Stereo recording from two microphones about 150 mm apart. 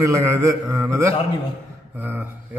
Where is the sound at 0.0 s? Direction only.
20° right (ahead or behind).